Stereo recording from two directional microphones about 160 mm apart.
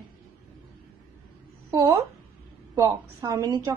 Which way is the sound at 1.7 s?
20° right (ahead or behind).